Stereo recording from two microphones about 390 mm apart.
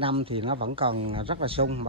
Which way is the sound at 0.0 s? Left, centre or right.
Centre.